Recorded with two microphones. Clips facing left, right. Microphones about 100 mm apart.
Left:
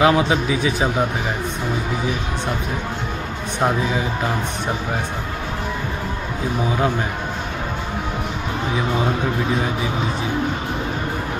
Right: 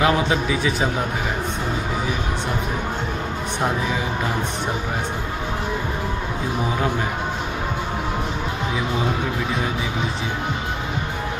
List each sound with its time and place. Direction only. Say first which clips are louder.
0.0 s a man's voice: left 3 dB; 20° left (ahead or behind)